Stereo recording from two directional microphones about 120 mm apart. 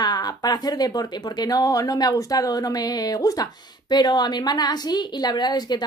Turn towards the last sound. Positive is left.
turn(degrees=35)  # may be behind; listen again after turning